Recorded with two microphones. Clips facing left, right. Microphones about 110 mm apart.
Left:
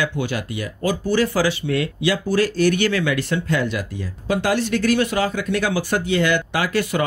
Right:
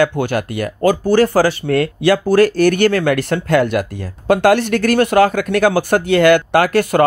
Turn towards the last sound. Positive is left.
turn(degrees=-55)  # may be behind; listen again after turning